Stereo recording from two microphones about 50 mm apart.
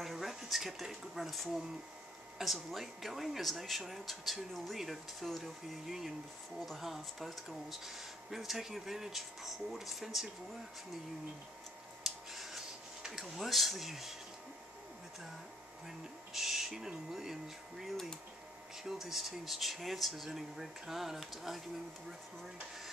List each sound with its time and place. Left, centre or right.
0.0 s speech: centre
12.0 s a sound: centre
13.0 s speech: centre
16.3 s speech: centre
18.9 s speech: centre